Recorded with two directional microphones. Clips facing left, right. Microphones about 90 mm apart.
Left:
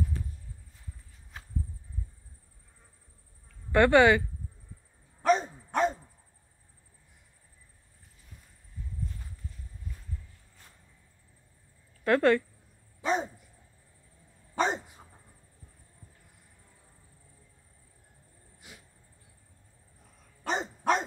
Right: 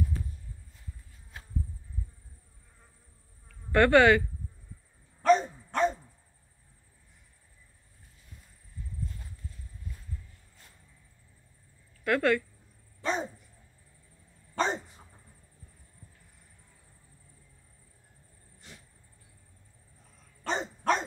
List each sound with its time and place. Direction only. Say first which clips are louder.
3.7 s speech: even; 20° left (ahead or behind)
5.2 s dog: right 2 dB; 15° left (ahead or behind)
12.0 s a sound: left 3 dB; 30° left (ahead or behind)
13.0 s dog: left 3 dB; 10° left (ahead or behind)
14.6 s dog: left 1 dB; 15° left (ahead or behind)
18.6 s a sound: even; 10° left (ahead or behind)
20.4 s dog: left 1 dB; 10° left (ahead or behind)